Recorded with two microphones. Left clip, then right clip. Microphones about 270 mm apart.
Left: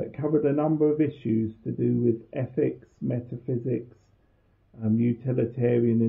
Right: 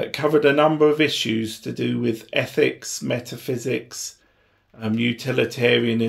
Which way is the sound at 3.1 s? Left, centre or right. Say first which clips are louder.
Right 5 dB; right.